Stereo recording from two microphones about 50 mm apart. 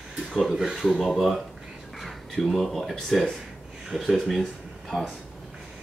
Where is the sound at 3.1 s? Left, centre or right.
Centre.